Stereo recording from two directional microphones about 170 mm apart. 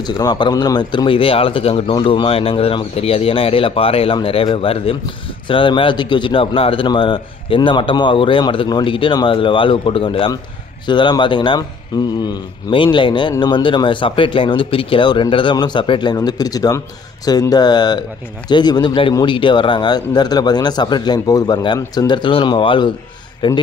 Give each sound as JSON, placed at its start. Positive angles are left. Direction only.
{"t": 0.0, "sound": "a man's voice", "side_deg": 25}